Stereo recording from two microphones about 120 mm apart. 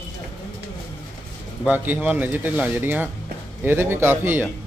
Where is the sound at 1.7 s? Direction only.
15° right (ahead or behind).